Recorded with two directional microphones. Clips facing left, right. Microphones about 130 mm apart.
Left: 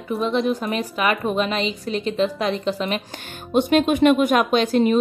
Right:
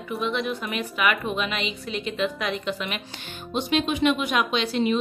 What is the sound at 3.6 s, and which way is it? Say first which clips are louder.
Speech: left 7 dB; 50° left (ahead or behind).